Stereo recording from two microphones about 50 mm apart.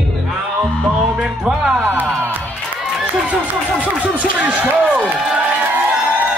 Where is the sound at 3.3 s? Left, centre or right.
Right.